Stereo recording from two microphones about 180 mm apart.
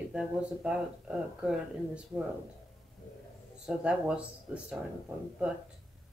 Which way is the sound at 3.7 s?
5° right (ahead or behind).